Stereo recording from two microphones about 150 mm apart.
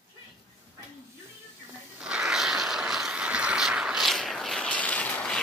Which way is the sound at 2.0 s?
5° right (ahead or behind).